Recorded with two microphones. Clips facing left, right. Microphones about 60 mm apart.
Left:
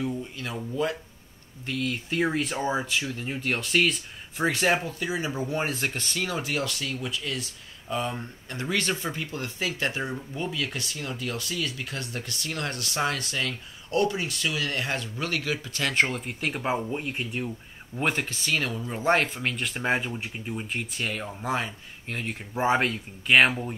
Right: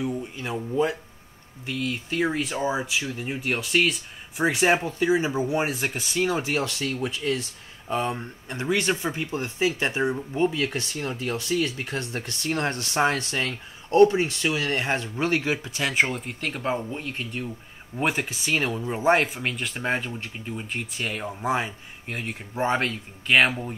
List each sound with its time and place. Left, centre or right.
1.7 s speech: centre
4.5 s speech: centre
4.8 s speech: right
5.4 s speech: centre
6.2 s speech: right
8.1 s speech: right
10.3 s speech: right
15.8 s speech: centre
17.9 s speech: centre